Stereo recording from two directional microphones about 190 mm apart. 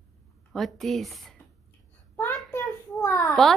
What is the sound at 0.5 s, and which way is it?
Speech, centre (ahead or behind).